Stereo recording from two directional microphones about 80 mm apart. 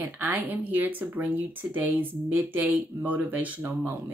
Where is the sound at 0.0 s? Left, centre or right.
Right.